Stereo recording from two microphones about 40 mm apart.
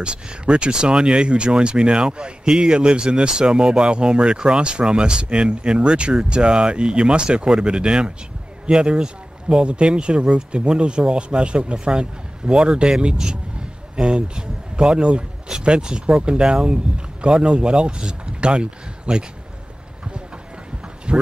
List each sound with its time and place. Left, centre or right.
0.0 s speech: right
13.9 s speech: right
21.1 s speech: right